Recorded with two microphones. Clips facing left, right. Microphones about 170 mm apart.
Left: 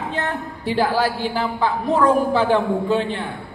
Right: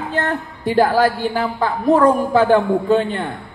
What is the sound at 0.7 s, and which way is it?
Speech, 45° right (ahead or behind).